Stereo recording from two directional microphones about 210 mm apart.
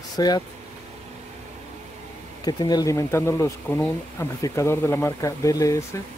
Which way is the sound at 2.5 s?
20° left (ahead or behind).